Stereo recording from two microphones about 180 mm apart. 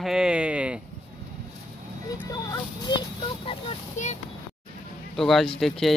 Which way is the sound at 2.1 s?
20° left (ahead or behind).